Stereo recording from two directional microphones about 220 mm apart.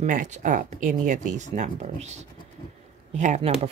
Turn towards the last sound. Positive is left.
turn(degrees=-30)  # may be behind; listen again after turning